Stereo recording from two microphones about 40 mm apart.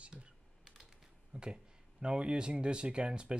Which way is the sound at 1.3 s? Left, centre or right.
Right.